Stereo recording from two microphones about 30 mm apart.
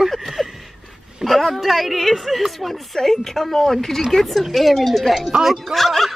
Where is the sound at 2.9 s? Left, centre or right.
Centre.